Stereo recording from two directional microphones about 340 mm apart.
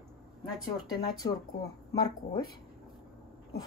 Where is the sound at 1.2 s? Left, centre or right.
Centre.